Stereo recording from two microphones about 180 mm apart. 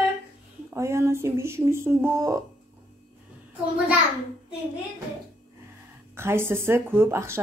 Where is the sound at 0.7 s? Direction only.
15° right (ahead or behind).